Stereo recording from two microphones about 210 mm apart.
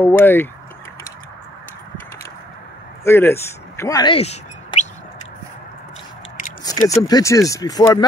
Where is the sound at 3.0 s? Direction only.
10° left (ahead or behind); by 4.9 s 30° left (ahead or behind).